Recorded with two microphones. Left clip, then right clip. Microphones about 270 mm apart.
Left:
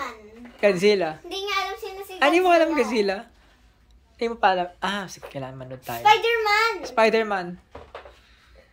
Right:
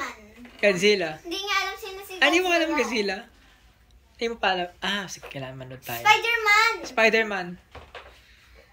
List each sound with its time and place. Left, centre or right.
0.6 s a woman's voice: centre
1.4 s child singing: left
2.1 s a woman's voice: centre
6.0 s a child's voice: left
6.8 s speech: centre